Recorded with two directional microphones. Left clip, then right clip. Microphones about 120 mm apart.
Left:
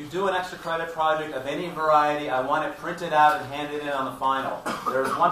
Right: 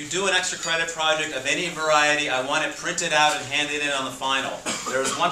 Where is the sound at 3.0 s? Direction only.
35° right (ahead or behind).